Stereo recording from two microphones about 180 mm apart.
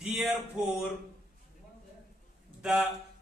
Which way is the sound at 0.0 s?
10° right (ahead or behind).